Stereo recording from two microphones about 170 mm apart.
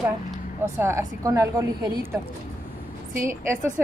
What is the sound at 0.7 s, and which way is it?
A woman's voice, 15° right (ahead or behind).